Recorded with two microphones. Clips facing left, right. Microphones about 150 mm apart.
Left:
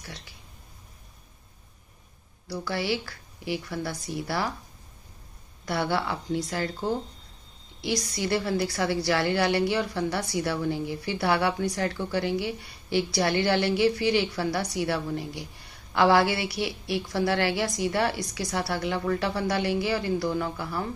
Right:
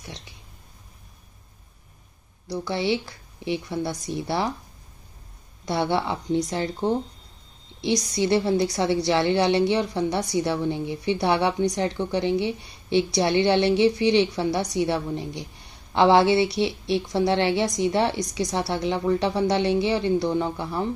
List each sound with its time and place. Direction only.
0.0 s a sound: 25° right (ahead or behind)
2.4 s a woman's voice: 20° right (ahead or behind)
5.7 s a woman's voice: 20° right (ahead or behind)